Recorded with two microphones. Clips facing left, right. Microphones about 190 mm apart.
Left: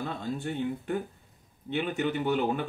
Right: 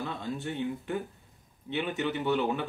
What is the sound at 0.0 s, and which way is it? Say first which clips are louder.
Speech: left 1 dB; 45° left (ahead or behind).